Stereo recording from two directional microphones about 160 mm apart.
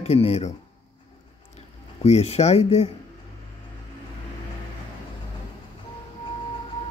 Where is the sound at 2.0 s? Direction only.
40° left (ahead or behind).